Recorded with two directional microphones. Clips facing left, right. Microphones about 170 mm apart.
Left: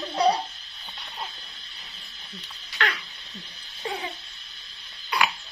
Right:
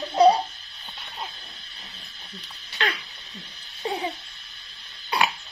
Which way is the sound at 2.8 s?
20° right (ahead or behind).